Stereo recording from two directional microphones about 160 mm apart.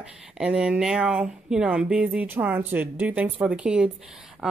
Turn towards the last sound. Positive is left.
turn(degrees=-5)  # may be behind; listen again after turning